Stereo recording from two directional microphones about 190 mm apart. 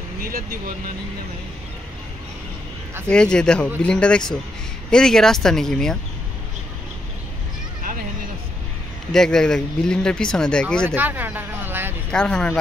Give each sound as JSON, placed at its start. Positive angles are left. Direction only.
{"t": 0.2, "sound": "speech", "side_deg": -50}
{"t": 3.1, "sound": "speech", "side_deg": 5}
{"t": 9.1, "sound": "speech", "side_deg": 5}
{"t": 11.0, "sound": "speech", "side_deg": -10}
{"t": 12.1, "sound": "speech", "side_deg": 5}